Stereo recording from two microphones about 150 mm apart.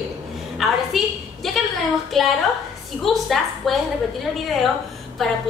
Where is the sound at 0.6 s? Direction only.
Centre (ahead or behind).